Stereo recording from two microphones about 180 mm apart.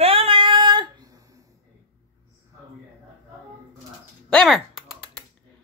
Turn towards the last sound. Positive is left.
turn(degrees=0)  # may be behind; listen again after turning